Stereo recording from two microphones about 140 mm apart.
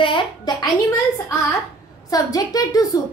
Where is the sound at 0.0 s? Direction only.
35° left (ahead or behind).